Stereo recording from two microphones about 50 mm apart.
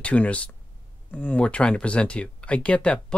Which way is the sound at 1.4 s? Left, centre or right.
Left.